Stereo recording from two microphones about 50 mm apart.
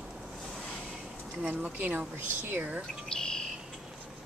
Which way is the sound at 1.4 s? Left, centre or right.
Right.